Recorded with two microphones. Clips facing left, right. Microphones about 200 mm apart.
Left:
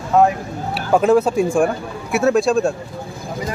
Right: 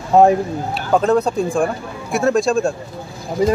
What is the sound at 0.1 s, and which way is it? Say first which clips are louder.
Speech: right 3 dB; 30° right (ahead or behind).